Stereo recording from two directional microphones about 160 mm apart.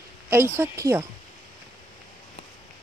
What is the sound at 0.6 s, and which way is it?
Speech, 15° right (ahead or behind).